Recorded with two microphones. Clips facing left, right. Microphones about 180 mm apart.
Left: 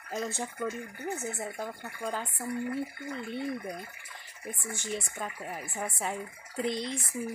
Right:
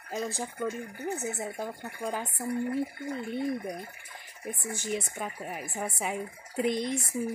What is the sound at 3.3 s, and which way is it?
Speech, 15° right (ahead or behind).